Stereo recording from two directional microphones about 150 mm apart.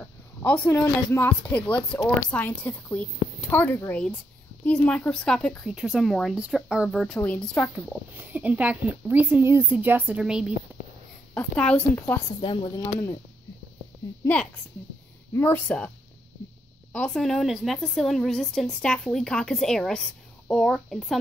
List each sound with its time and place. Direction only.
0.0 s a sound: 15° left (ahead or behind)
0.7 s a woman's voice: 15° left (ahead or behind)
8.2 s speech: 10° right (ahead or behind)
11.3 s a woman's voice: 5° left (ahead or behind)
12.4 s speech: 35° left (ahead or behind)
12.7 s speech: 20° left (ahead or behind)
14.2 s a woman's voice: 10° left (ahead or behind)
16.9 s speech: 5° left (ahead or behind)